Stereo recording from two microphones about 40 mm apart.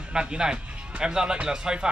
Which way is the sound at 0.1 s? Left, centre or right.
Right.